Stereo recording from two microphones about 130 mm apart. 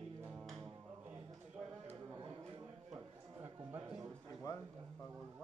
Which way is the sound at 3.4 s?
15° right (ahead or behind).